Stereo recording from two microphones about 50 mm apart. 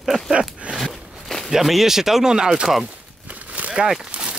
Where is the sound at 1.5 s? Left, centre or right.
Centre.